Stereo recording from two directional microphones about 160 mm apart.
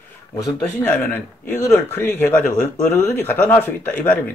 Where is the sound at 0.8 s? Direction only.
15° left (ahead or behind).